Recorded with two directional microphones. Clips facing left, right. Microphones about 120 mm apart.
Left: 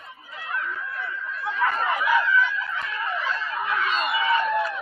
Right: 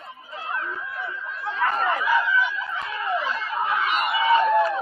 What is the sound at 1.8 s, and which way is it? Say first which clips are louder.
Chatter: right 1 dB; centre (ahead or behind).